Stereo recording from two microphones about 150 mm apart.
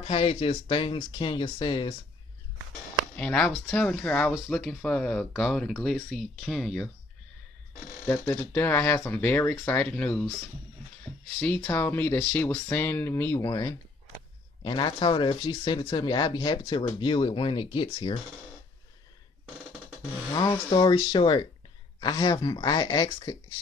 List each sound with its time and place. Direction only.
0.0 s speech: 40° left (ahead or behind)
3.2 s speech: 5° left (ahead or behind)
8.1 s speech: 15° left (ahead or behind)
11.1 s a sound: centre (ahead or behind)
11.6 s speech: 15° left (ahead or behind); by 18.2 s 35° left (ahead or behind)
20.3 s speech: 30° left (ahead or behind)